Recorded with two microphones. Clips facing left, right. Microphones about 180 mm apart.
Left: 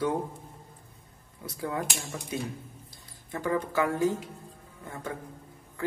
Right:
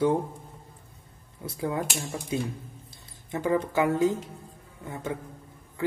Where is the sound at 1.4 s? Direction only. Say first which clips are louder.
Right 3 dB; 25° right (ahead or behind).